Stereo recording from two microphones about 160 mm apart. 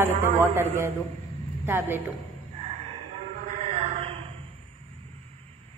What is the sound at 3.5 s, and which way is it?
Music, 40° right (ahead or behind).